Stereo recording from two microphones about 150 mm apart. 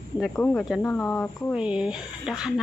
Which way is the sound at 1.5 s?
5° right (ahead or behind).